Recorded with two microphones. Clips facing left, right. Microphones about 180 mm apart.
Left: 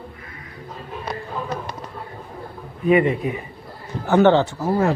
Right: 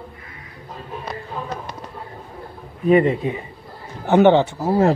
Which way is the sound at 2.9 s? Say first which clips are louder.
Right 2 dB; 35° right (ahead or behind).